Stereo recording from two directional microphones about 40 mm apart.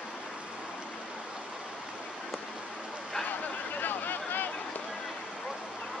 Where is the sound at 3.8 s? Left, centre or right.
Left.